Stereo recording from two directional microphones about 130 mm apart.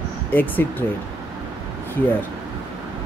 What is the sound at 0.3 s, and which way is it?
Speech, 15° left (ahead or behind).